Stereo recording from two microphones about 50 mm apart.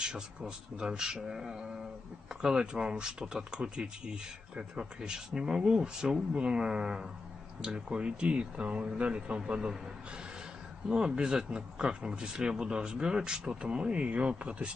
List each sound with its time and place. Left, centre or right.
0.0 s speech: centre
10.9 s speech: centre